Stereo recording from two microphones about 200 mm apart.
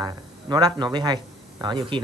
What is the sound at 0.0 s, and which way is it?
Speech, 20° right (ahead or behind).